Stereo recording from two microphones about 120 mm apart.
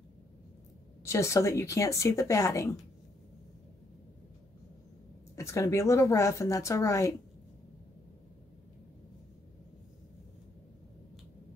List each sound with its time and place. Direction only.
1.0 s speech: 25° left (ahead or behind)
5.3 s speech: 25° left (ahead or behind)